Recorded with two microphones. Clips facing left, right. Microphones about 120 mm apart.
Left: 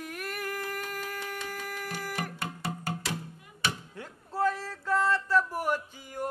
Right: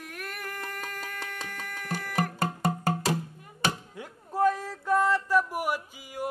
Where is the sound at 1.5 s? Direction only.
5° left (ahead or behind).